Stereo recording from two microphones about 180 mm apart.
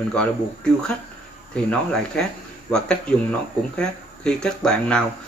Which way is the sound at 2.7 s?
5° left (ahead or behind).